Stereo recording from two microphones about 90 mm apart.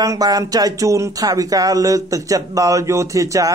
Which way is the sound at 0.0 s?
45° right (ahead or behind).